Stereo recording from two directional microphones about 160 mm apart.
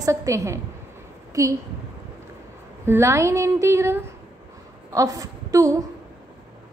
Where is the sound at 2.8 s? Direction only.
15° right (ahead or behind).